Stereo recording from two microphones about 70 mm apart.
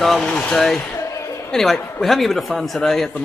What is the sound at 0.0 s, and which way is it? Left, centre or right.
Speech, centre.